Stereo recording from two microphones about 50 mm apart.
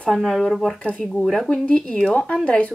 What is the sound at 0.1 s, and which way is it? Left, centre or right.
Speech, centre.